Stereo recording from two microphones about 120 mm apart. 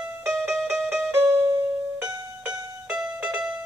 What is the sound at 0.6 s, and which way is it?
Music, centre (ahead or behind).